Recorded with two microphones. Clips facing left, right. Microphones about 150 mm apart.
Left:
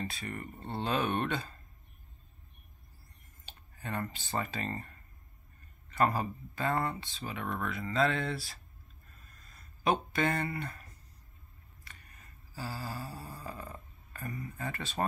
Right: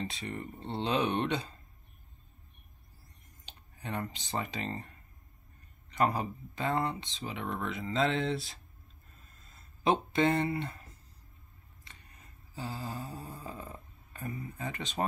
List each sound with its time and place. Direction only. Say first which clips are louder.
0.0 s speech: right 1 dB; 20° right (ahead or behind)
3.4 s speech: even; 15° right (ahead or behind)
9.3 s a sound: left 1 dB; 25° right (ahead or behind)
13.5 s speech: even; 20° right (ahead or behind)